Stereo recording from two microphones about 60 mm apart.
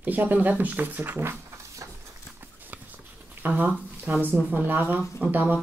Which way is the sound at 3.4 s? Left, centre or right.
Right.